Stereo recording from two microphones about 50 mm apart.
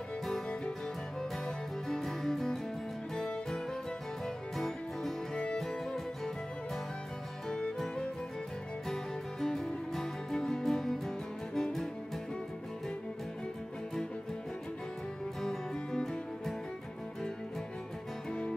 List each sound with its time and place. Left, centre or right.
1.9 s music: centre
4.6 s music: centre
7.4 s music: centre
8.8 s music: centre
15.4 s music: centre